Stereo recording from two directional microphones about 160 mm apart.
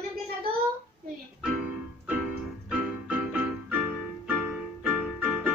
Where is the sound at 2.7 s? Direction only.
5° right (ahead or behind).